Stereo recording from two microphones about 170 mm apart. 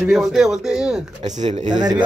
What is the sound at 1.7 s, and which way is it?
Speech, 25° right (ahead or behind).